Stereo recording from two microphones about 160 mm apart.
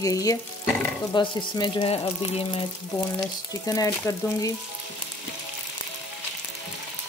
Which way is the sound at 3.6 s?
20° left (ahead or behind).